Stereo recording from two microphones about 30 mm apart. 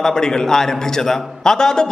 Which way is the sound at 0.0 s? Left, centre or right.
Centre.